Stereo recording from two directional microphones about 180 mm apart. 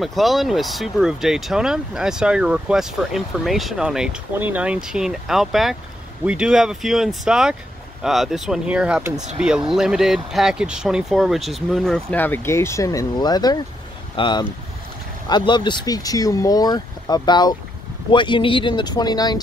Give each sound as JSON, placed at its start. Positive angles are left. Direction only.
{"t": 0.0, "sound": "speech", "side_deg": 0}